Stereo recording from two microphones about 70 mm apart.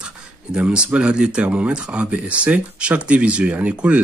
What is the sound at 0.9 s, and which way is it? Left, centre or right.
Speech, centre.